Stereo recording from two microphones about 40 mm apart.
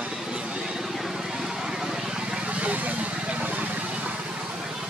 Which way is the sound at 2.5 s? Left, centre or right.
Right.